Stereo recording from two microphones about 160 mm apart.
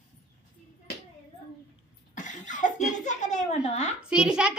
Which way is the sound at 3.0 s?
50° left (ahead or behind).